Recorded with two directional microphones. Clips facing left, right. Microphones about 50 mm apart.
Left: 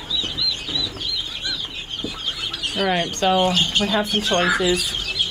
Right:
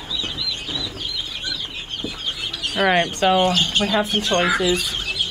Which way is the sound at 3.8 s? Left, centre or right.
Centre.